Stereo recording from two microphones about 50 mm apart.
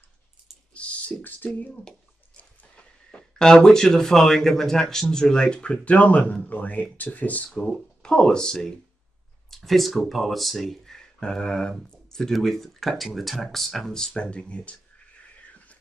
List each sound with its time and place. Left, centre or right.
0.7 s computer keyboard: left
2.7 s a sound: left
3.4 s speech: centre; by 7.5 s left
8.0 s speech: centre